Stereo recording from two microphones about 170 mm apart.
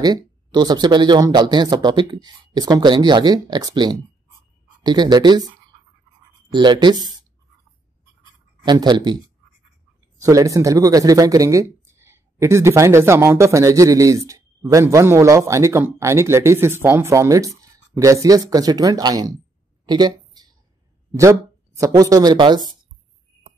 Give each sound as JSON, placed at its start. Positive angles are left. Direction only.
{"t": 0.0, "sound": "speech", "side_deg": -25}
{"t": 6.5, "sound": "speech", "side_deg": -25}
{"t": 8.6, "sound": "speech", "side_deg": -25}
{"t": 19.9, "sound": "a sound", "side_deg": -25}
{"t": 21.2, "sound": "speech", "side_deg": -20}